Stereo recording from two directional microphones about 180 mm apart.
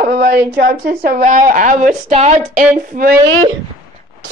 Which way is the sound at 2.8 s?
50° right (ahead or behind).